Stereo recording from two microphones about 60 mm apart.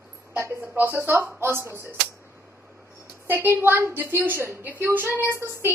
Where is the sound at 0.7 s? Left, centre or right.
Right.